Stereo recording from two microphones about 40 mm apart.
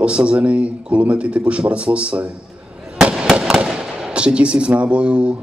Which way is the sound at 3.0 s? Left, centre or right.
Right.